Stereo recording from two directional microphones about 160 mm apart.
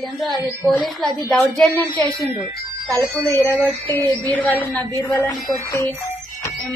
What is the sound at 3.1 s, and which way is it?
A woman's voice, 10° left (ahead or behind).